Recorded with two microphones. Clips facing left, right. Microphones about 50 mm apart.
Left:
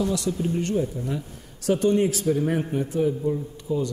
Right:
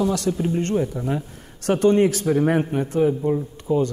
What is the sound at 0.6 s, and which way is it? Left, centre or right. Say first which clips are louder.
A man's voice: right 3 dB; right.